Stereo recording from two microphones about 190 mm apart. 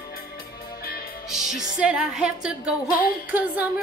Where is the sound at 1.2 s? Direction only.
Centre (ahead or behind).